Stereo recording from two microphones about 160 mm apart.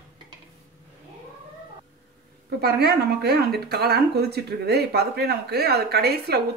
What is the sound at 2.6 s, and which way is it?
Speech, 80° right.